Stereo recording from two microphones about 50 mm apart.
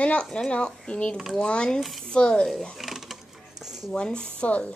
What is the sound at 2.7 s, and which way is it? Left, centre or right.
Sewing machine, centre.